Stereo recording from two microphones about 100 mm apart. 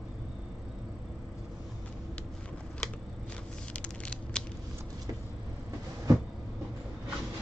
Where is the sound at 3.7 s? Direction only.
10° left (ahead or behind).